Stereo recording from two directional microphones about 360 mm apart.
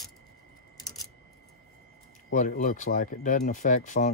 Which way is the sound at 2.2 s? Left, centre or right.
Left.